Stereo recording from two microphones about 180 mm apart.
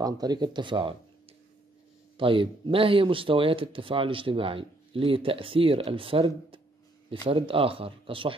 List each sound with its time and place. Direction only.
0.0 s speech: 20° right (ahead or behind)
2.1 s speech: 30° right (ahead or behind)